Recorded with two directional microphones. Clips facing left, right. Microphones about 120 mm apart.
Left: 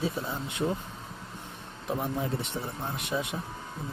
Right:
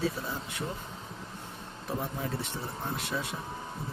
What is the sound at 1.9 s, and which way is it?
Speech, 20° left (ahead or behind).